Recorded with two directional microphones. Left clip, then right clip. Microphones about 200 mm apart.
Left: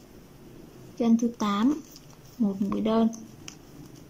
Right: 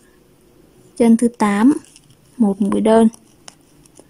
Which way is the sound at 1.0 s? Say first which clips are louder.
Right 11 dB; 35° right (ahead or behind).